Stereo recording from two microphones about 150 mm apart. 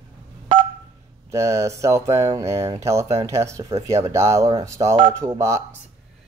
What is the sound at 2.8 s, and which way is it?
Speech, 20° right (ahead or behind).